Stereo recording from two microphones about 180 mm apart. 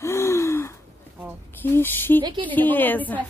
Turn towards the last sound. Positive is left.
turn(degrees=10)  # may be behind; listen again after turning